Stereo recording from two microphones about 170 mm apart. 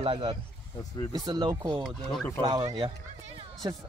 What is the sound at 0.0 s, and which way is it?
Speech, 30° right (ahead or behind).